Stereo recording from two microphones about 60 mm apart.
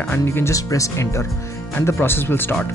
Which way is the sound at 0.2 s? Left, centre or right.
Left.